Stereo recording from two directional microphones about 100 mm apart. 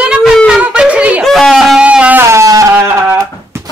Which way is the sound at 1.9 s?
15° right (ahead or behind).